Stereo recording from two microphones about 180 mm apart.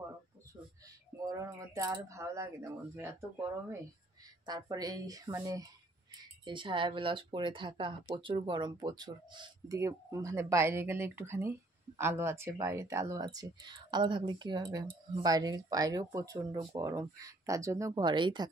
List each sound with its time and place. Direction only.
1.3 s speech: 20° right (ahead or behind)
4.5 s speech: 20° right (ahead or behind)